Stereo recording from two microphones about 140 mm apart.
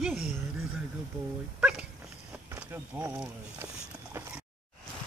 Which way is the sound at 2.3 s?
15° right (ahead or behind).